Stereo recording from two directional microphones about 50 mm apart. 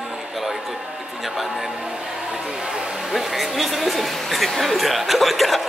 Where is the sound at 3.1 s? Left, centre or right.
Centre.